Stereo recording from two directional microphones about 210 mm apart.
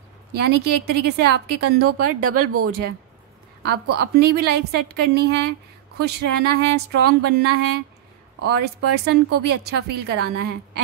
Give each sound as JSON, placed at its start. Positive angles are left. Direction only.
{"t": 0.3, "sound": "speech", "side_deg": -50}
{"t": 2.0, "sound": "speech", "side_deg": -90}
{"t": 3.6, "sound": "speech", "side_deg": -50}